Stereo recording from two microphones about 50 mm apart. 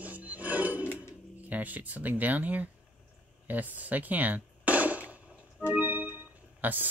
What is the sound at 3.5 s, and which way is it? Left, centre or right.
Chop, right.